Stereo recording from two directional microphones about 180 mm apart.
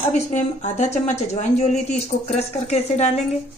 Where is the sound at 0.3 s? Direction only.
40° left (ahead or behind).